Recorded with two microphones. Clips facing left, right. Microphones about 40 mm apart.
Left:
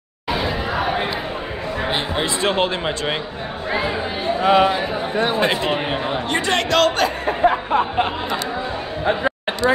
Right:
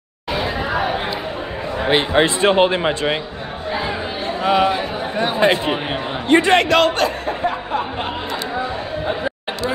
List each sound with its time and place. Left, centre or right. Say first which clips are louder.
0.3 s a sound: right 1 dB; centre
1.9 s speech: right 8 dB; right
2.5 s speech: right 5 dB; centre
4.4 s a man's voice: left 1 dB; centre
5.2 s speech: right 4 dB; centre
6.2 s speech: right 10 dB; right
6.7 s speech: right 1 dB; centre
7.2 s a sound: left 4 dB; left